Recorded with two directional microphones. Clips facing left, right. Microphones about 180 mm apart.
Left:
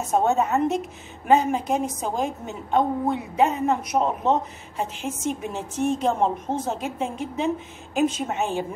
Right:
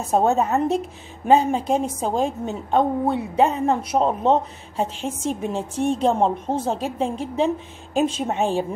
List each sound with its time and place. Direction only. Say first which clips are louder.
0.0 s a woman's voice: right 2 dB; 35° right (ahead or behind)